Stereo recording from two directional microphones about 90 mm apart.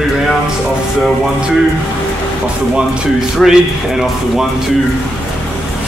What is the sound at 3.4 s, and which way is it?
Speech, 5° left (ahead or behind).